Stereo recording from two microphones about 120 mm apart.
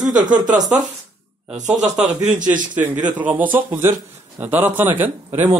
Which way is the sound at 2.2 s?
90° right.